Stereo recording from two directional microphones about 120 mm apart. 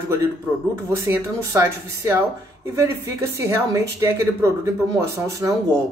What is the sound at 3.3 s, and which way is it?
Speech, 25° right (ahead or behind).